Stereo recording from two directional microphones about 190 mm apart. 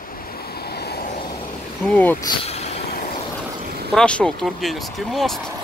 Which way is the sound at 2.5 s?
35° left (ahead or behind).